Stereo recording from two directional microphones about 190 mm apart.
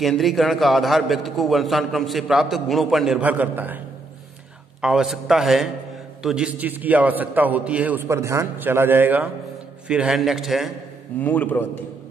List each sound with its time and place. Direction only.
0.0 s a man's voice: centre (ahead or behind)
4.8 s a man's voice: centre (ahead or behind)